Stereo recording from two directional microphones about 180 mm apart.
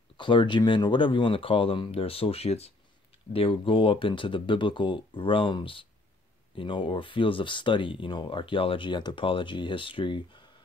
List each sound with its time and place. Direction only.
0.2 s speech: 25° left (ahead or behind)